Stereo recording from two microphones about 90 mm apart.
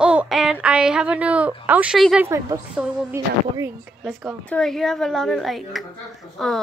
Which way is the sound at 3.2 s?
35° right (ahead or behind).